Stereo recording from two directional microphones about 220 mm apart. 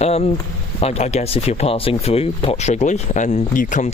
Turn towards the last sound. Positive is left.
turn(degrees=35)  # may be behind; listen again after turning